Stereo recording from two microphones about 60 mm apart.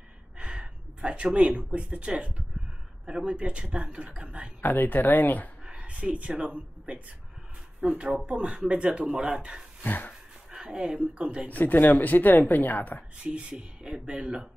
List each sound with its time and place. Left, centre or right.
0.4 s gasp: centre
1.7 s speech: right
4.6 s speech: left
5.7 s speech: right
9.8 s speech: left
10.6 s speech: centre
11.5 s speech: left
13.2 s speech: centre